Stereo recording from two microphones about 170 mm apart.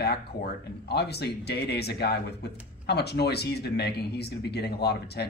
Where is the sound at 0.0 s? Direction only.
70° left (ahead or behind).